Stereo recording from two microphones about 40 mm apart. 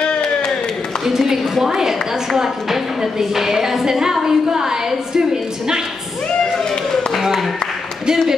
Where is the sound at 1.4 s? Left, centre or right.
Centre.